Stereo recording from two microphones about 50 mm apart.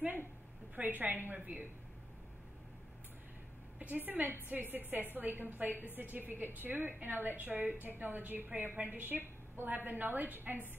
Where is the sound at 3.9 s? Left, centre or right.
Right.